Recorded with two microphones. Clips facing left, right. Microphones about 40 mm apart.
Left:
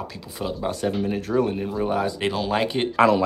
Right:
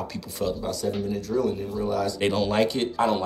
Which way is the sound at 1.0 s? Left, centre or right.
Left.